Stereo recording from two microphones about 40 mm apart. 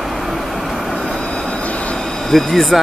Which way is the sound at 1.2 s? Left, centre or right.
Left.